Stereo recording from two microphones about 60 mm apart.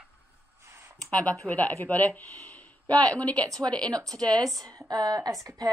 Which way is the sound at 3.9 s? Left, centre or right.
Right.